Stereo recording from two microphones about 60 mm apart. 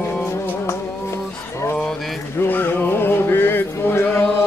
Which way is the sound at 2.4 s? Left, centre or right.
Left.